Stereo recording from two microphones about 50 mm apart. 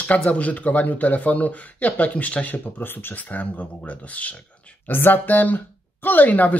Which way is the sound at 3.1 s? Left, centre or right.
Left.